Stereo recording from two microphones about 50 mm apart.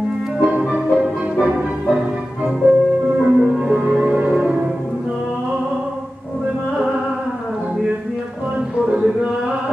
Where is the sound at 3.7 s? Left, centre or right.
Right.